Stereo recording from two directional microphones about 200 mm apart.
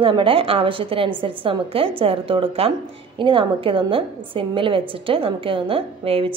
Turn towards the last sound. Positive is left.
turn(degrees=-30)  # may be behind; listen again after turning